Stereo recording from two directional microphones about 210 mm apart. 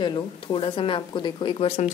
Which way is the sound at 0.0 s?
20° left (ahead or behind).